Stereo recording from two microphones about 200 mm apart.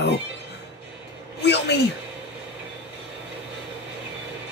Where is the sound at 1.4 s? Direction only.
60° left (ahead or behind).